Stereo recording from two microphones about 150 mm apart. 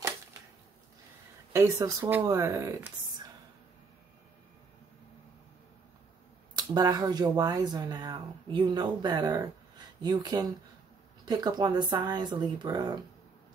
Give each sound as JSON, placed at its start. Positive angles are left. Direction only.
{"t": 1.5, "sound": "speech", "side_deg": -20}
{"t": 6.5, "sound": "speech", "side_deg": -30}